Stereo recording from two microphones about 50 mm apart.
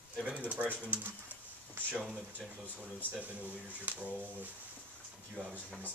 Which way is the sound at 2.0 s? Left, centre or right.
Centre.